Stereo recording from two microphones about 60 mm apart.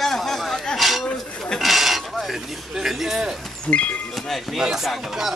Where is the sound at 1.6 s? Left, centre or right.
Centre.